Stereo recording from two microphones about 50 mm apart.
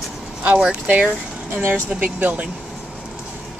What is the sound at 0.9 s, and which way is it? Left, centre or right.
Speech, right.